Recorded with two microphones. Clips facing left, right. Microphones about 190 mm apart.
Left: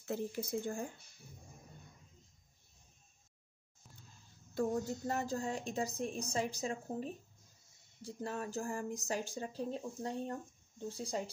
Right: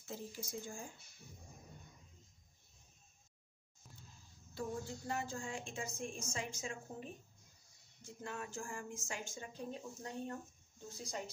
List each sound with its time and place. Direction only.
0.0 s speech: 65° left (ahead or behind)
4.6 s a woman's voice: 40° left (ahead or behind)